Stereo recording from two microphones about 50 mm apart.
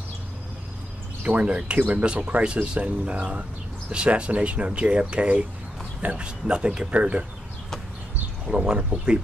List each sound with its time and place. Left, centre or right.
1.4 s speech: right
8.5 s speech: right